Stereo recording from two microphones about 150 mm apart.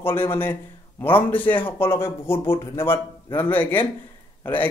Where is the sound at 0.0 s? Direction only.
15° left (ahead or behind).